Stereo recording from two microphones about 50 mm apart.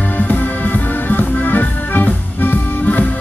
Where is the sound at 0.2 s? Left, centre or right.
Left.